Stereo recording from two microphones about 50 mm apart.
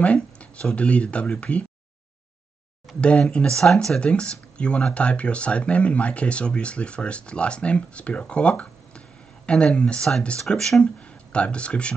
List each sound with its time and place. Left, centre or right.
0.0 s speech: left
3.2 s speech: centre
4.0 s speech: left